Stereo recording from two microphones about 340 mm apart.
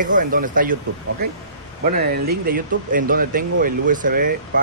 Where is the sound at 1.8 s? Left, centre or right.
Right.